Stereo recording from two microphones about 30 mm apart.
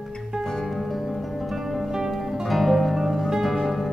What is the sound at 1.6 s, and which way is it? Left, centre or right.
Music, centre.